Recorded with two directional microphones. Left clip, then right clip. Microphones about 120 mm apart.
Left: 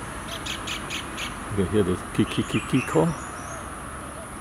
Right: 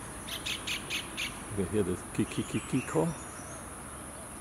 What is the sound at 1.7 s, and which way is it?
Bee, 45° left (ahead or behind).